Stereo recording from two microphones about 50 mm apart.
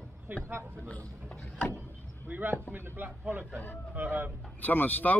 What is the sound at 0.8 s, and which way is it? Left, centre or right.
Speech, left.